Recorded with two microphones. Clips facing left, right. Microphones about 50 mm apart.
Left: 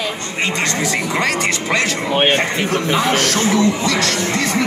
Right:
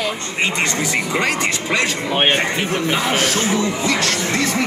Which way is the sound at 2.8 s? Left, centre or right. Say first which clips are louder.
Left 2 dB; right.